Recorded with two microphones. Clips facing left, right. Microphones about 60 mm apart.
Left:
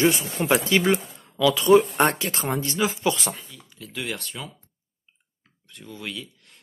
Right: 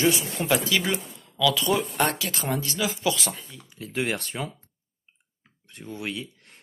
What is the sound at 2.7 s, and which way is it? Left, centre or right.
Speech, left.